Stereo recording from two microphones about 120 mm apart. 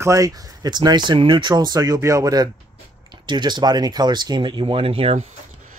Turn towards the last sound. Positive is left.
turn(degrees=-55)  # may be behind; listen again after turning